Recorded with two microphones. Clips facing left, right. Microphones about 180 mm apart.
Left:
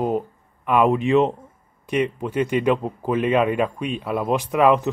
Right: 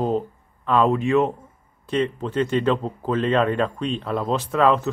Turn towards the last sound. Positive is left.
turn(degrees=15)  # may be behind; listen again after turning